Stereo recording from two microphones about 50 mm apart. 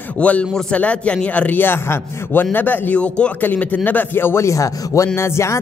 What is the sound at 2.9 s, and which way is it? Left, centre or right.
Speech, left.